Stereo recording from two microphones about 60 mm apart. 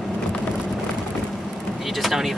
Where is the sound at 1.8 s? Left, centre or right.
Centre.